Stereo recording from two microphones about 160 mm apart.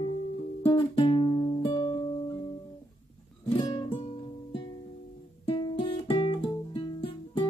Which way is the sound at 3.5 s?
25° left (ahead or behind).